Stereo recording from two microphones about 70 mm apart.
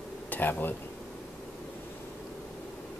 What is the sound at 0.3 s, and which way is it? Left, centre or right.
Speech, left.